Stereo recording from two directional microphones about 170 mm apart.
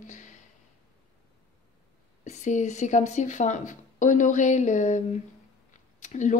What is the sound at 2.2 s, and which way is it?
Speech, 45° left (ahead or behind).